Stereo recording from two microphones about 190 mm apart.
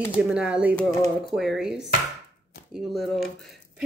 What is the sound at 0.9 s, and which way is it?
Speech, 20° left (ahead or behind).